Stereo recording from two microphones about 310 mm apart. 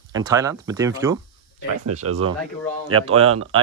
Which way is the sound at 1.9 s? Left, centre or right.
Right.